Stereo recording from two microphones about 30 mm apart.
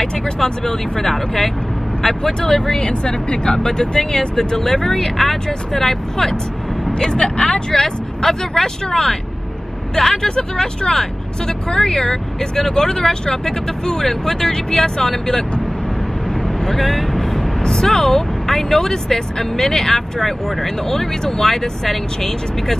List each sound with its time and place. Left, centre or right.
0.0 s speech: centre
2.8 s speech: left; by 6.3 s centre
7.0 s speech: left
16.4 s speech: centre